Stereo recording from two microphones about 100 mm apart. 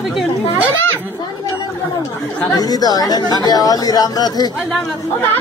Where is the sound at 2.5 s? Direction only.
40° left (ahead or behind).